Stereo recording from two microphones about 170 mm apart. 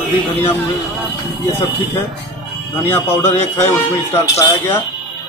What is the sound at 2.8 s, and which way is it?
A man's voice, 15° left (ahead or behind).